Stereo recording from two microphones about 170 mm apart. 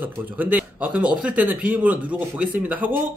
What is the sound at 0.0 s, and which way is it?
Speech, 10° right (ahead or behind).